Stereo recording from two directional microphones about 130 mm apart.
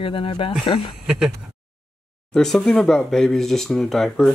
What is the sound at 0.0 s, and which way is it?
Speech, 45° left (ahead or behind).